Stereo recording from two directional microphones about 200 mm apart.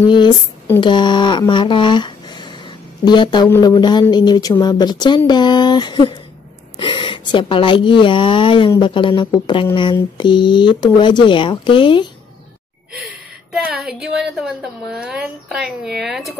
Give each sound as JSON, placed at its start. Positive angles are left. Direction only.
{"t": 0.7, "sound": "a woman's voice", "side_deg": 25}
{"t": 13.5, "sound": "a woman's voice", "side_deg": 0}